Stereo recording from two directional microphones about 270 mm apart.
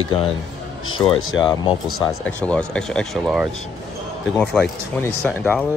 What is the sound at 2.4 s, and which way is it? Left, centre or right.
Speech, centre.